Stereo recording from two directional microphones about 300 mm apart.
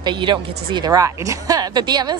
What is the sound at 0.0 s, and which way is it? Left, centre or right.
Speech, centre.